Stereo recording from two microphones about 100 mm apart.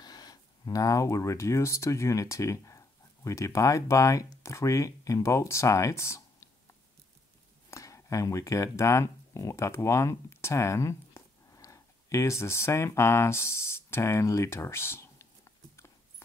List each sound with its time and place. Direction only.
0.0 s speech: 40° left (ahead or behind)
7.7 s speech: 35° left (ahead or behind)